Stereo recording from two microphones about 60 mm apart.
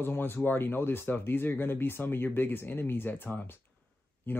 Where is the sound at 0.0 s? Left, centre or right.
Left.